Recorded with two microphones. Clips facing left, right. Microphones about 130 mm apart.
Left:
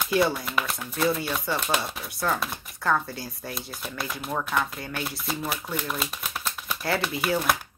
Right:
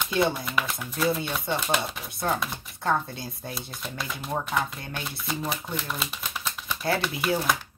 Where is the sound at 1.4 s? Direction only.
25° right (ahead or behind).